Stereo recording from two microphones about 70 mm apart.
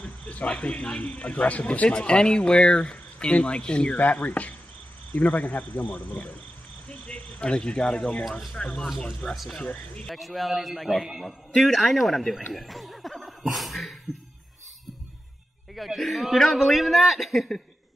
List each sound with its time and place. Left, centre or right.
0.0 s speech: centre
9.3 s a man's voice: centre
9.6 s speech: centre
10.0 s a man's voice: centre
15.7 s a man's voice: centre